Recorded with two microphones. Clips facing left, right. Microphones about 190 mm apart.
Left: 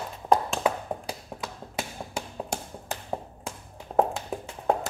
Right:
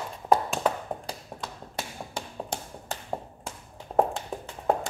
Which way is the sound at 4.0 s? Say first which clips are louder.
Even; centre (ahead or behind).